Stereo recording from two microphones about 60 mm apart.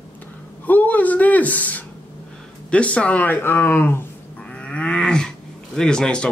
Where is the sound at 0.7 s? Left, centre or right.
Left.